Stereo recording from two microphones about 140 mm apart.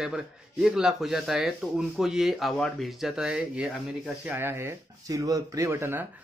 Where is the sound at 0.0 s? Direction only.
5° right (ahead or behind).